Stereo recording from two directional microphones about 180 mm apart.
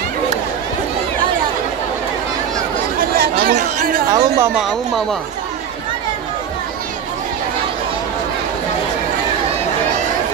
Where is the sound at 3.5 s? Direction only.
45° right (ahead or behind).